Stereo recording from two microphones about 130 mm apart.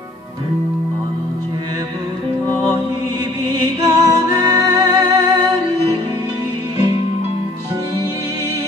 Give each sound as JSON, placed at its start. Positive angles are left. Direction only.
{"t": 3.8, "sound": "music", "side_deg": -30}